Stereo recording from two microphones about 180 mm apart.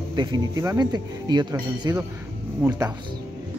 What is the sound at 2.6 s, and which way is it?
Speech, 10° right (ahead or behind).